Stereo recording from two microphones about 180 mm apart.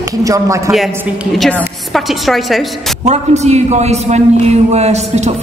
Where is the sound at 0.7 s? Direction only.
Centre (ahead or behind).